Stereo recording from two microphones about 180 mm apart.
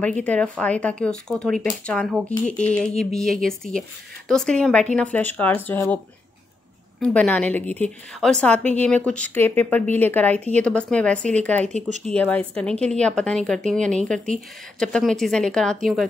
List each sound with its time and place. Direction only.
0.0 s a woman's voice: 10° left (ahead or behind)
7.0 s a woman's voice: 5° left (ahead or behind)
11.6 s speech: 40° right (ahead or behind)
12.1 s a woman's voice: 5° left (ahead or behind)